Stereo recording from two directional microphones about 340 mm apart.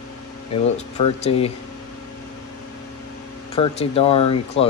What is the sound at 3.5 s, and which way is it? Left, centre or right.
Speech, centre.